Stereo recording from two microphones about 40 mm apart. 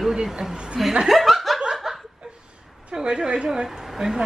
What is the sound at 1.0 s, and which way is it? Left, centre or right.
Laughter, centre.